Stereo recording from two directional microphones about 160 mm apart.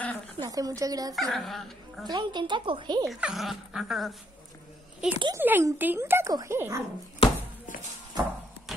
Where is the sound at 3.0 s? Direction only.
Centre (ahead or behind).